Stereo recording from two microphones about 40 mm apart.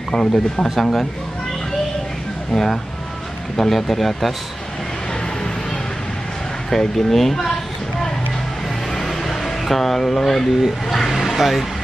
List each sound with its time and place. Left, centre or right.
0.1 s speech: centre
2.5 s speech: centre
6.7 s speech: centre
9.0 s air conditioning: centre
10.9 s speech: centre
11.2 s vehicle: centre